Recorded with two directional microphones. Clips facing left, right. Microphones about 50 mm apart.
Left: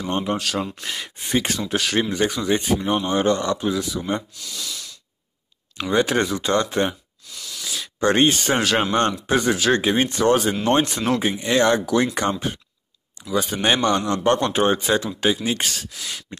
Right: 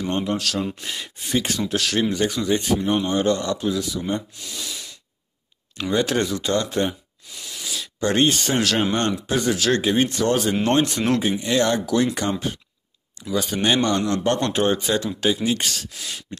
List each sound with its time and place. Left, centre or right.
0.1 s a man's voice: left
4.4 s speech: right
5.8 s a man's voice: left
7.3 s a sound: right
8.0 s a man's voice: left